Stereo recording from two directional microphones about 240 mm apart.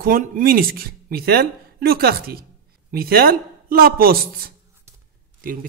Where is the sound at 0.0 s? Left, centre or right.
Right.